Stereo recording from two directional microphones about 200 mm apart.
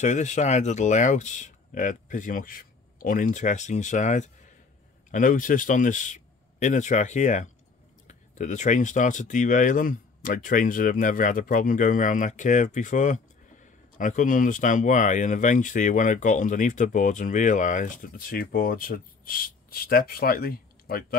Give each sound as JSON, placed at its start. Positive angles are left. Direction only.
{"t": 0.0, "sound": "speech", "side_deg": 35}